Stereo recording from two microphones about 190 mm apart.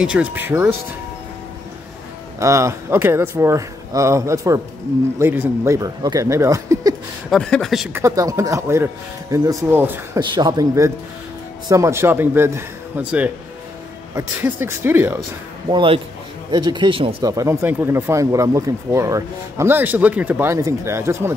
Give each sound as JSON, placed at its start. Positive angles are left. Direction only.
{"t": 0.0, "sound": "speech", "side_deg": -5}
{"t": 2.3, "sound": "speech", "side_deg": -15}
{"t": 7.2, "sound": "speech", "side_deg": 5}
{"t": 7.9, "sound": "speech", "side_deg": -15}
{"t": 10.2, "sound": "speech", "side_deg": -25}
{"t": 15.7, "sound": "speech", "side_deg": -25}
{"t": 17.3, "sound": "speech", "side_deg": -15}